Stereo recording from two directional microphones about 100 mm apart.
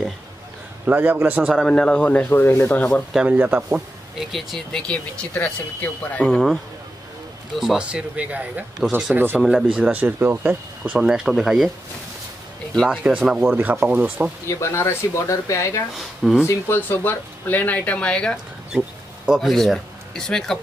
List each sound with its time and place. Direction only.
0.8 s speech: 20° right (ahead or behind)
1.6 s speech: 10° left (ahead or behind)
2.9 s speech: centre (ahead or behind)
3.3 s speech: 15° right (ahead or behind)
4.2 s speech: centre (ahead or behind); by 9.4 s 20° right (ahead or behind)
9.4 s speech: 5° right (ahead or behind)
9.8 s speech: 15° right (ahead or behind)
12.9 s speech: 10° right (ahead or behind)
14.5 s speech: 30° left (ahead or behind)
16.0 s speech: centre (ahead or behind)
16.4 s speech: 20° left (ahead or behind)
18.7 s speech: 10° right (ahead or behind)